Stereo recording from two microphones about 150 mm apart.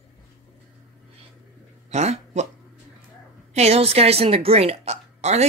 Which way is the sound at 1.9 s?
50° right (ahead or behind).